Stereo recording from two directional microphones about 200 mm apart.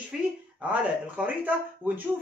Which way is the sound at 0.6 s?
5° right (ahead or behind).